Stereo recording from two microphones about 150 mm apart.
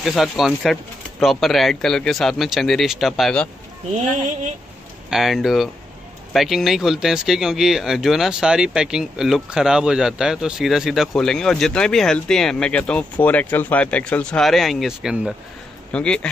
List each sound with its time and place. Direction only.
0.0 s speech: centre (ahead or behind)
3.9 s speech: 55° right (ahead or behind)
5.1 s speech: centre (ahead or behind)
15.9 s speech: 5° left (ahead or behind)